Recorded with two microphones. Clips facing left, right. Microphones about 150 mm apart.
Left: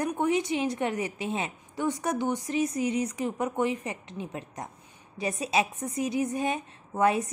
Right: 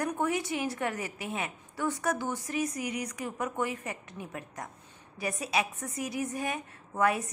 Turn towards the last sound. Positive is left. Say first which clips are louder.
# left 3 dB
turn(degrees=25)  # may be behind; listen again after turning